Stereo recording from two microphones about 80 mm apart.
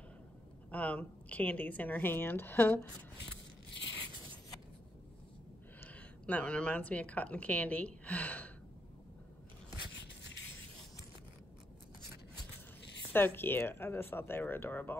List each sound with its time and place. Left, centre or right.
0.7 s speech: centre
5.8 s a woman's voice: left
13.1 s speech: left